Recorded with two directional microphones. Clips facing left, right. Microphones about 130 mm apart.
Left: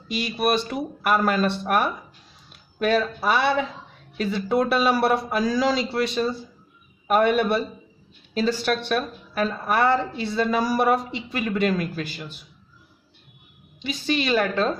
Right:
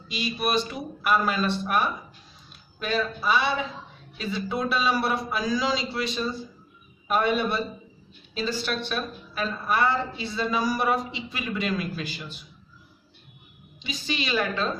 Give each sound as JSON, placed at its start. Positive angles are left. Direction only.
{"t": 0.1, "sound": "speech", "side_deg": 60}
{"t": 13.7, "sound": "speech", "side_deg": 55}